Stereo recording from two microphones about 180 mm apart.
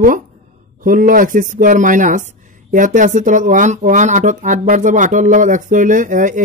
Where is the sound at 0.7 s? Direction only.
50° right (ahead or behind).